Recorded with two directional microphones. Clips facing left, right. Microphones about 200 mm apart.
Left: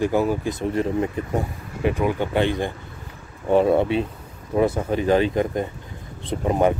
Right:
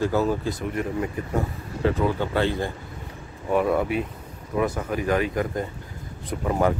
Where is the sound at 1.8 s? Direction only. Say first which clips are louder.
Left 1 dB; 15° left (ahead or behind).